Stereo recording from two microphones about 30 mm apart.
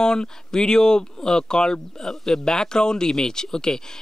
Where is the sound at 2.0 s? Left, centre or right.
Centre.